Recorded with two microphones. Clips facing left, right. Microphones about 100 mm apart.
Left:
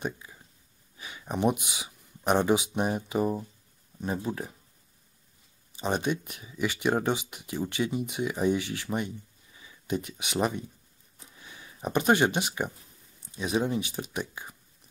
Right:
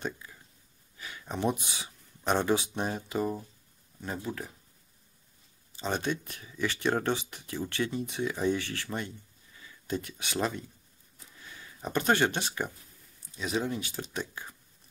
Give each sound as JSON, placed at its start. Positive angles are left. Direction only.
{"t": 0.0, "sound": "speech", "side_deg": 15}
{"t": 5.7, "sound": "speech", "side_deg": 15}
{"t": 11.1, "sound": "a sound", "side_deg": 20}
{"t": 13.4, "sound": "speech", "side_deg": 20}